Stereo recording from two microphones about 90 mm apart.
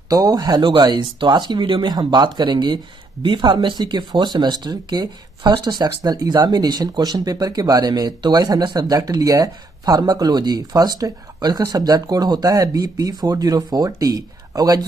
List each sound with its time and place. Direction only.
0.1 s speech: 45° right (ahead or behind)